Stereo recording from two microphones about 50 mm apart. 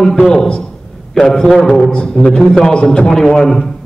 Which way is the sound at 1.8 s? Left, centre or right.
Left.